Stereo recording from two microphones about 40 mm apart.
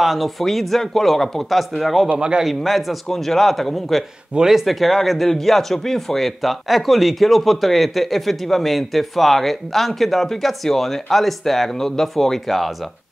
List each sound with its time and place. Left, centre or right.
0.0 s speech: centre
2.1 s a man's voice: right
2.4 s speech: centre
4.4 s speech: centre
4.6 s speech: centre